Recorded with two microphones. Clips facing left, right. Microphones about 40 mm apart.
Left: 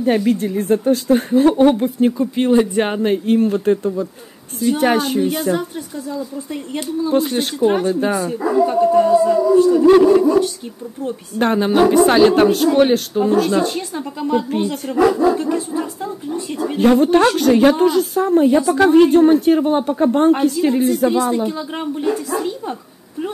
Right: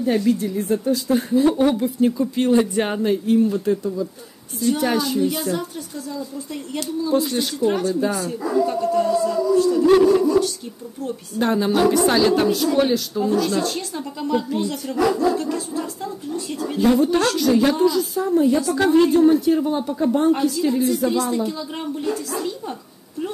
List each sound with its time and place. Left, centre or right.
0.0 s a woman's voice: left
5.6 s speech: left
11.3 s a woman's voice: left
13.6 s speech: centre
14.5 s speech: left
16.7 s a woman's voice: left
21.1 s speech: left